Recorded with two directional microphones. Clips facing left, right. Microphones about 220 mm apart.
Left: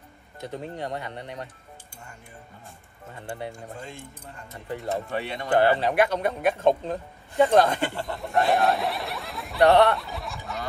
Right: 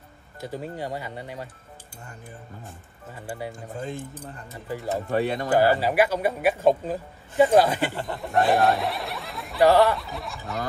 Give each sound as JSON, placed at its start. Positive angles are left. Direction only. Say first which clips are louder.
{"t": 0.4, "sound": "speech", "louder": "right 1 dB", "side_deg": -5}
{"t": 3.2, "sound": "speech", "louder": "right 1 dB", "side_deg": -5}
{"t": 5.1, "sound": "speech", "louder": "right 6 dB", "side_deg": -40}
{"t": 5.5, "sound": "speech", "louder": "left 1 dB", "side_deg": -5}